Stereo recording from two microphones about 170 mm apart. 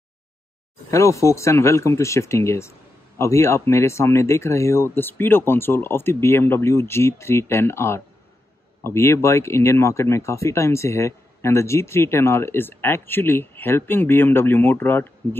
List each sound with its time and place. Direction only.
0.8 s speech: 15° left (ahead or behind)